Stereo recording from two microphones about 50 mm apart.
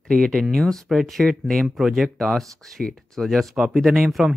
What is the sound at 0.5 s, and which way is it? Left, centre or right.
Speech, centre.